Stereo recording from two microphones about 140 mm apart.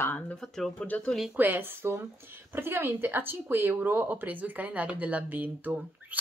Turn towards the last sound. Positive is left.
turn(degrees=-10)  # may be behind; listen again after turning